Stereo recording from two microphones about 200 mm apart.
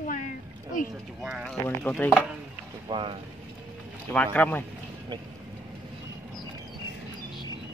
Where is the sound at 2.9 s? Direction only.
25° right (ahead or behind).